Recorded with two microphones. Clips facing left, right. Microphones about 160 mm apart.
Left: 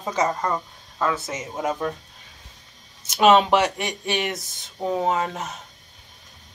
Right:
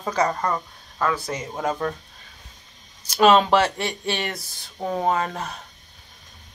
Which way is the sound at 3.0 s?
20° left (ahead or behind).